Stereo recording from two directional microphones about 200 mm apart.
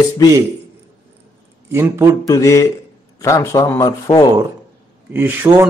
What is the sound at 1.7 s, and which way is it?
Speech, 10° right (ahead or behind).